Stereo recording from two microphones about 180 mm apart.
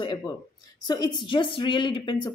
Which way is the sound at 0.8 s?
20° left (ahead or behind).